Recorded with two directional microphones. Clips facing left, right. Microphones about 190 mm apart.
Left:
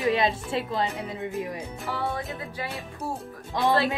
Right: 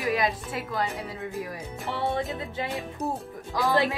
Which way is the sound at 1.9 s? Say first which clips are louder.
Right 4 dB; 25° right (ahead or behind).